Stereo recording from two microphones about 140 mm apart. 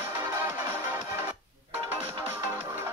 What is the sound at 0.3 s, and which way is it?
Music, 15° right (ahead or behind).